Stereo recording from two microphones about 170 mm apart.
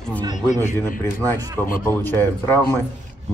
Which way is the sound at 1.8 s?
10° left (ahead or behind).